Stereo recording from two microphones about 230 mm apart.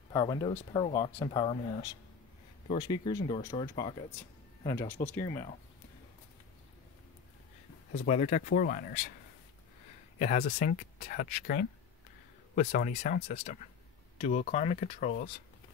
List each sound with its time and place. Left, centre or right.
0.1 s speech: centre
7.9 s speech: left
10.1 s speech: left